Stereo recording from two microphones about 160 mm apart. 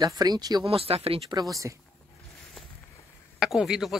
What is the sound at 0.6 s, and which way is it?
Speech, 35° right (ahead or behind).